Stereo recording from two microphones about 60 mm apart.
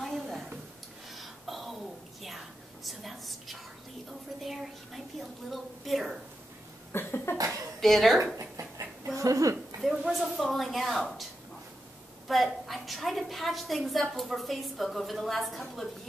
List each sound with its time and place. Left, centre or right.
0.0 s a sound: centre
5.5 s a woman's voice: centre
6.9 s cough: left
7.3 s speech: right
7.8 s a woman's voice: centre
8.4 s dog: right
9.1 s speech: right
9.8 s a woman's voice: centre
12.3 s a woman's voice: centre